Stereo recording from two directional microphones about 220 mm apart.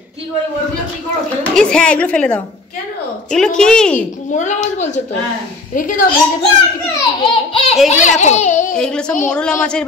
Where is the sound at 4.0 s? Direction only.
35° left (ahead or behind).